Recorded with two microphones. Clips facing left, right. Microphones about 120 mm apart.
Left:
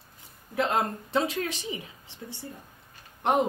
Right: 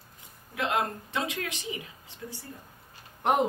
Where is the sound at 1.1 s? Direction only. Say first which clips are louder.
Left 5 dB; 30° left (ahead or behind).